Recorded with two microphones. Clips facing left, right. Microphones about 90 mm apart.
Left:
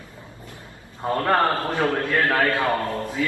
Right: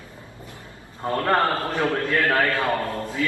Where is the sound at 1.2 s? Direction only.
20° left (ahead or behind).